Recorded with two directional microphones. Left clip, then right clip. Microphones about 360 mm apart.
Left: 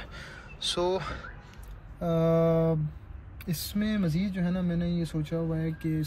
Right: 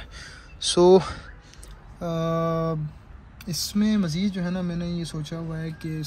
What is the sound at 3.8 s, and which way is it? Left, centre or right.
Speech, centre.